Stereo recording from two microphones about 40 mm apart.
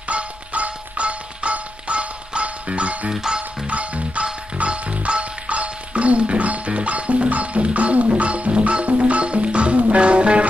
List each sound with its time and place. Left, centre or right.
0.1 s music: right
3.1 s music: centre
3.6 s music: right